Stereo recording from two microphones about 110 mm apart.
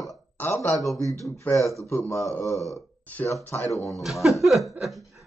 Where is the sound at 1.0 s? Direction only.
30° right (ahead or behind).